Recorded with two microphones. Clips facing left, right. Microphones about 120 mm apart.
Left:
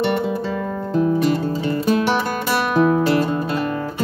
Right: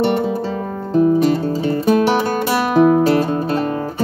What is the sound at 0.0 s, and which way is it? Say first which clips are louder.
Music: right 3 dB; 30° right (ahead or behind).